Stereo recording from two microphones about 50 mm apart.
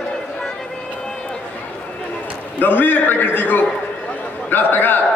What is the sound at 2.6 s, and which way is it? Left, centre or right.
A man's voice, left.